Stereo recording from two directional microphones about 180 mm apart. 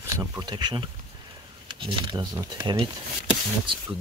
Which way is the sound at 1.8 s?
25° right (ahead or behind).